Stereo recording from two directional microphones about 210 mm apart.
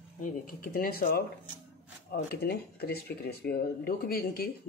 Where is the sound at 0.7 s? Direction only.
45° left (ahead or behind).